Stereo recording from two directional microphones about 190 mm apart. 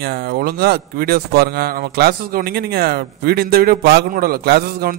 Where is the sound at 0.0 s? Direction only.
55° right (ahead or behind).